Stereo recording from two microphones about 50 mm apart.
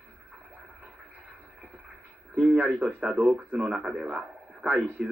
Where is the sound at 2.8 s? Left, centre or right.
Right.